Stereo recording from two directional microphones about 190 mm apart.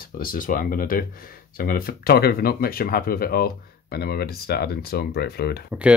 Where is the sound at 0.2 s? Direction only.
45° left (ahead or behind).